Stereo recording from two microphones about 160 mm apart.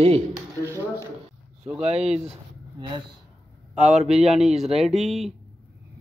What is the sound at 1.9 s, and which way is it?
Speech, 45° right (ahead or behind).